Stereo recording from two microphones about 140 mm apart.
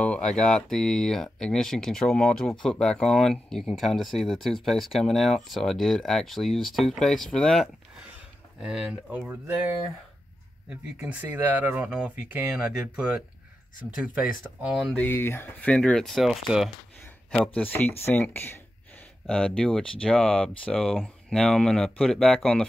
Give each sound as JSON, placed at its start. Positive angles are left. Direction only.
{"t": 0.0, "sound": "speech", "side_deg": 10}
{"t": 15.0, "sound": "speech", "side_deg": 15}
{"t": 17.6, "sound": "speech", "side_deg": 15}